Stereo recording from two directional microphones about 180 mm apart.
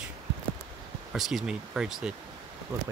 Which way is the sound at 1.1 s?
Centre (ahead or behind).